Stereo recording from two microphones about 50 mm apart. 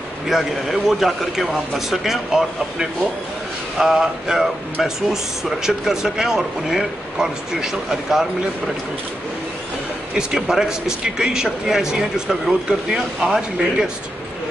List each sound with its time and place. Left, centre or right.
0.3 s a man's voice: centre
10.1 s speech: centre